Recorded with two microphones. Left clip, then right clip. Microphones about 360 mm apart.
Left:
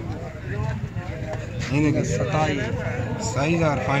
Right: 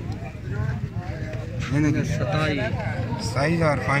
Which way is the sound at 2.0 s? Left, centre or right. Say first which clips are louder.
Left 3 dB; centre.